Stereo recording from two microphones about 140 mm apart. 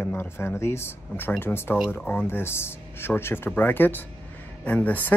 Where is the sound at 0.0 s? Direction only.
15° left (ahead or behind).